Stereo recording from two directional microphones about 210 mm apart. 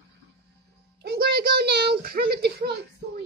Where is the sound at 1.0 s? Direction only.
45° right (ahead or behind).